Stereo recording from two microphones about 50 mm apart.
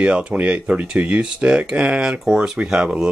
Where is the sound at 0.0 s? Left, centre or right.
Right.